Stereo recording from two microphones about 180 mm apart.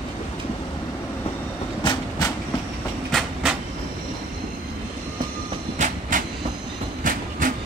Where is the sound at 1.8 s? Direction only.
25° left (ahead or behind).